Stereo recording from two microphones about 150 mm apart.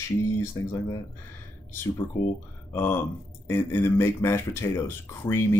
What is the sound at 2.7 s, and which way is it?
Speech, 15° left (ahead or behind).